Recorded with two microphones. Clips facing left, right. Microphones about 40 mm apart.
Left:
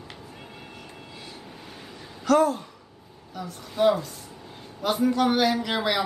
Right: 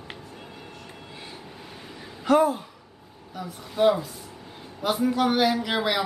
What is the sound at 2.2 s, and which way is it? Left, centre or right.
A man's voice, centre.